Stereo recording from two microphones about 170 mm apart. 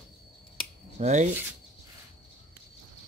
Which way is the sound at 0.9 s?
45° right (ahead or behind).